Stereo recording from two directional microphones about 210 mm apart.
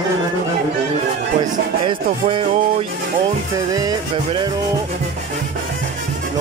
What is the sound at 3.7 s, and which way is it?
Speech, 15° right (ahead or behind).